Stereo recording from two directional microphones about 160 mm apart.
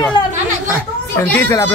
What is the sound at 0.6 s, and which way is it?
Speech, 15° left (ahead or behind).